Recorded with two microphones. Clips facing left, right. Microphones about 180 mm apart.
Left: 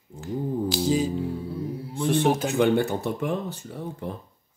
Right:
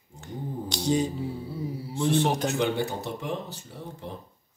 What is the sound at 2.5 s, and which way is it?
Speech, 55° left (ahead or behind).